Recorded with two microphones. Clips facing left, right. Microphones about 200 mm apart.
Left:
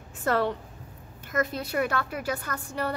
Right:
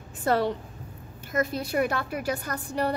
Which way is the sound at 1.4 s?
10° right (ahead or behind).